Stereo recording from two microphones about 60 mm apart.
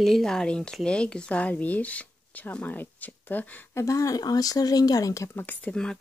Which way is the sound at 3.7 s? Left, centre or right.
Left.